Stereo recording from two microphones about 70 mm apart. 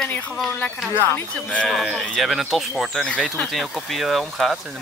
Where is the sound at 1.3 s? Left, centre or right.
Centre.